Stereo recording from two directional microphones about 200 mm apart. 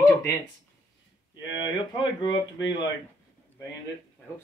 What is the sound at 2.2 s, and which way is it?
Speech, 20° left (ahead or behind).